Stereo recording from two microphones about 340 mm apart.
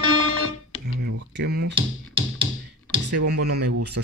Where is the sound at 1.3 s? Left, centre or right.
Right.